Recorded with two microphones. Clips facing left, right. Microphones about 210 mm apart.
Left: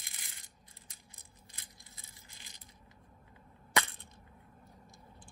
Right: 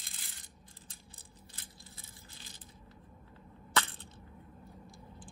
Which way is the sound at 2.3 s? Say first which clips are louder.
Right 5 dB; 15° left (ahead or behind).